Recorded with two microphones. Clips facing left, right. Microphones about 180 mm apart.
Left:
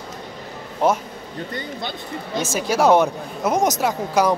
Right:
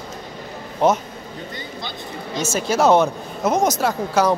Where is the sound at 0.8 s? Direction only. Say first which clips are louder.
Right 2 dB; 5° left (ahead or behind).